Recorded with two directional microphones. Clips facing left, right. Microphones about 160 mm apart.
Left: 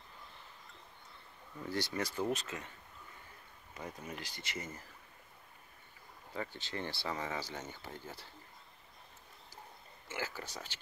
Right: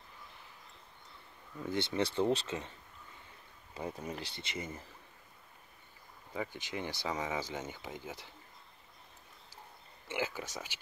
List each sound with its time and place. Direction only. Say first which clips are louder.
1.7 s speech: right 4 dB; 25° right (ahead or behind)
3.7 s speech: right 5 dB; 30° right (ahead or behind)
6.3 s speech: right 2 dB; 15° right (ahead or behind)
10.0 s speech: right 5 dB; 20° right (ahead or behind)